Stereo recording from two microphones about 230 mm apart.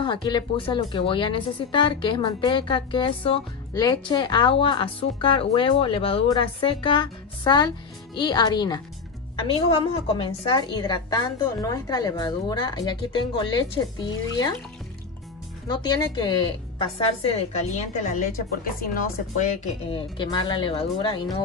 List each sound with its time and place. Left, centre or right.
0.0 s a woman's voice: left
15.7 s a woman's voice: centre
18.1 s a woman's voice: left; by 21.4 s centre